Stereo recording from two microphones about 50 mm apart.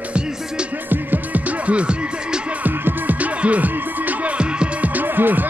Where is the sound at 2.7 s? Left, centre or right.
Right.